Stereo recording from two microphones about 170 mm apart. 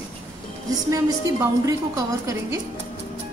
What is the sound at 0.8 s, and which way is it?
A woman's voice, 20° right (ahead or behind).